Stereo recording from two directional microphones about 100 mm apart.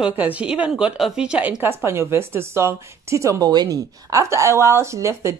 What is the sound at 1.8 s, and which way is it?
A woman's voice, 25° right (ahead or behind).